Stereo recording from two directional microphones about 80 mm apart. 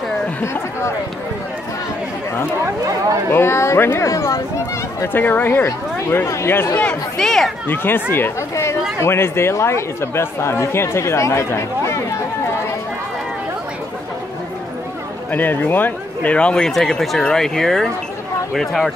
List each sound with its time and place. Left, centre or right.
0.4 s speech: left
3.3 s speech: left
4.1 s speech: left
5.0 s speech: left
6.2 s speech: left
7.2 s speech: centre
7.6 s speech: left
15.3 s speech: left; by 18.9 s centre